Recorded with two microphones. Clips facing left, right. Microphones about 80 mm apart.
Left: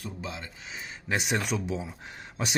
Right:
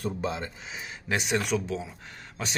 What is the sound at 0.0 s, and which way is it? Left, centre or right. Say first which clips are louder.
Speech: right 7 dB; right.